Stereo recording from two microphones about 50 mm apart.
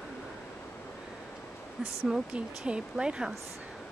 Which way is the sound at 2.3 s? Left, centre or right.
Right.